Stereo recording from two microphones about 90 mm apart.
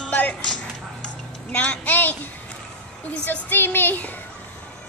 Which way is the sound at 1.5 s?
15° left (ahead or behind).